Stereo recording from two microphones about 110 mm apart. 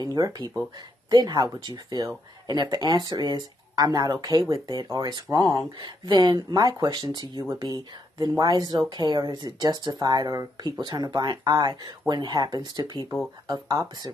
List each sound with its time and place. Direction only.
0.0 s speech: 35° right (ahead or behind)